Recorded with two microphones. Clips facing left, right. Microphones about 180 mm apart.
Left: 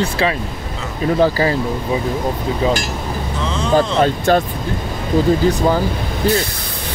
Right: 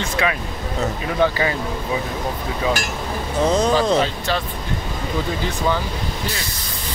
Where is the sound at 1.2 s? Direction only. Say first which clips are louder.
Left 3 dB; 35° left (ahead or behind).